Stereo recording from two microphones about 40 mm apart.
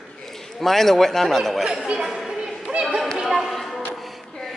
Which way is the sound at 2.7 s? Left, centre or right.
Right.